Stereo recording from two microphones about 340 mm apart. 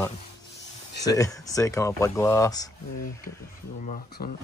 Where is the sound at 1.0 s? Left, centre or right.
Centre.